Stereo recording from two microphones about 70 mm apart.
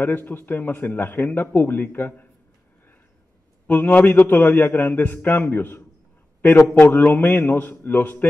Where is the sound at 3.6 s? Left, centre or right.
Left.